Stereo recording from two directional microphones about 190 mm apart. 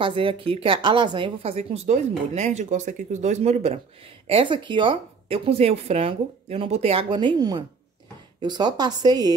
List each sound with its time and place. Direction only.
0.0 s a woman's voice: 25° right (ahead or behind)